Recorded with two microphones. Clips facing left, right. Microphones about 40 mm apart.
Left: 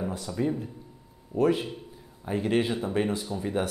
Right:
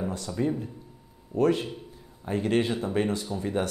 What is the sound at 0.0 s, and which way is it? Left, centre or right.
A man's voice, centre.